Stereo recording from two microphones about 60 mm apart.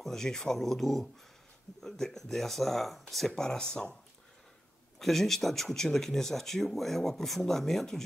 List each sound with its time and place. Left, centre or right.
0.0 s speech: centre
4.9 s speech: centre